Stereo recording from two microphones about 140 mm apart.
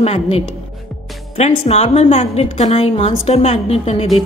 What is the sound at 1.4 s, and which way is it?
A woman's voice, 50° left (ahead or behind).